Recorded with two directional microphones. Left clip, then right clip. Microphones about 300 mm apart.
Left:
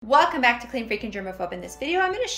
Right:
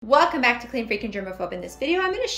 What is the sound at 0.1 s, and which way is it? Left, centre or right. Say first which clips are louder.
A woman's voice: even; centre.